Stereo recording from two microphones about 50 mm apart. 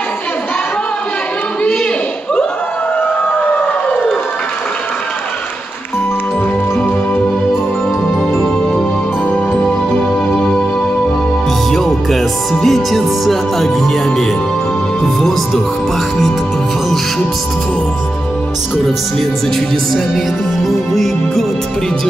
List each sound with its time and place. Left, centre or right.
3.5 s a sound: left
11.7 s speech: centre
20.6 s speech: centre